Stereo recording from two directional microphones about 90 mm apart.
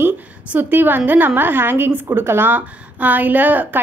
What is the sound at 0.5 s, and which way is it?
A woman's voice, 20° right (ahead or behind).